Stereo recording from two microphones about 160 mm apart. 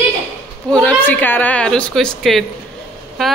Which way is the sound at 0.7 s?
5° left (ahead or behind).